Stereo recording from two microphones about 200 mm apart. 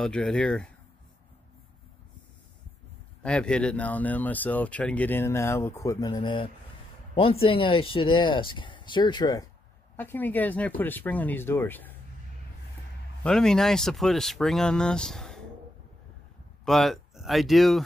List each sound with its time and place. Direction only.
0.0 s speech: 5° left (ahead or behind)
3.2 s speech: 5° left (ahead or behind)
13.2 s speech: 5° left (ahead or behind)
16.6 s speech: centre (ahead or behind)